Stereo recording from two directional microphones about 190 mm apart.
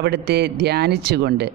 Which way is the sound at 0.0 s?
60° right (ahead or behind).